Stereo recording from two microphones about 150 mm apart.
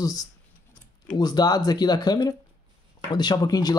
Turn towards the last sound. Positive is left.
turn(degrees=25)  # may be behind; listen again after turning